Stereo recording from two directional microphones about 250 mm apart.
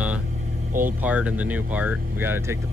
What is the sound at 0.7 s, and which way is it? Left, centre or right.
Speech, right.